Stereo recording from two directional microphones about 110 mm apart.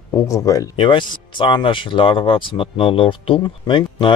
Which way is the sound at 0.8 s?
50° left (ahead or behind).